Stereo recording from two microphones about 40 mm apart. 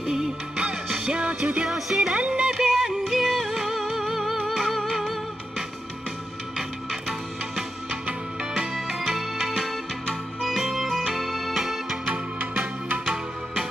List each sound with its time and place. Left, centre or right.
0.0 s music: centre
1.0 s music: right
1.7 s music: centre
2.1 s music: right
2.5 s music: centre
6.5 s music: centre
8.1 s music: right
8.7 s music: centre
13.0 s music: centre